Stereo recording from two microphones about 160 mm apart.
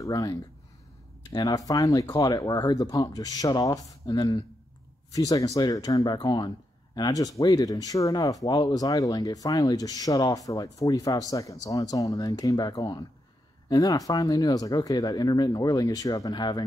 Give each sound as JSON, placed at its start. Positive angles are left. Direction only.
{"t": 0.0, "sound": "speech", "side_deg": 20}